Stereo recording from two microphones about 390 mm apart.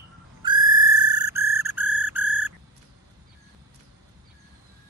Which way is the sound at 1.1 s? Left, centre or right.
Centre.